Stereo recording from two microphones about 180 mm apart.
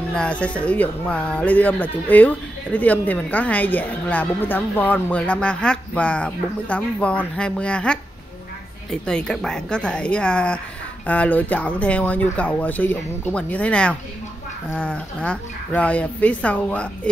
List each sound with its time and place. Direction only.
0.1 s speech: 5° left (ahead or behind)